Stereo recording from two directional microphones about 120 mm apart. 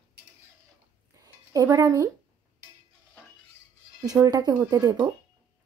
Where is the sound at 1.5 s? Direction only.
30° right (ahead or behind).